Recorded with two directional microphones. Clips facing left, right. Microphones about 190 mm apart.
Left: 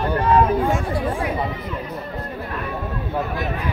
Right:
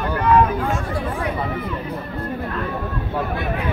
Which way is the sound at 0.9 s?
30° left (ahead or behind).